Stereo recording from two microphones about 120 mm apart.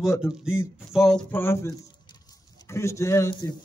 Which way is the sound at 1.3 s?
20° left (ahead or behind).